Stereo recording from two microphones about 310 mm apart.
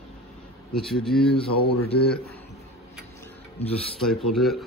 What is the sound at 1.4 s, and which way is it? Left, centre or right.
Mantra, left.